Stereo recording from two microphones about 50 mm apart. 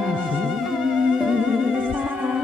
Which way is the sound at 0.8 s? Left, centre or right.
Centre.